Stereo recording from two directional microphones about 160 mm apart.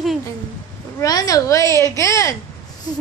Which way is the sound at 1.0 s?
20° left (ahead or behind).